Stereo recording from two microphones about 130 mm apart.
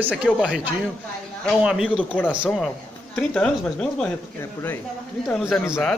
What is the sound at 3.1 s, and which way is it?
Speech, 10° left (ahead or behind).